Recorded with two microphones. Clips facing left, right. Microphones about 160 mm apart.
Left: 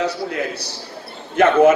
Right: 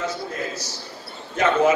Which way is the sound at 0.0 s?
70° left (ahead or behind).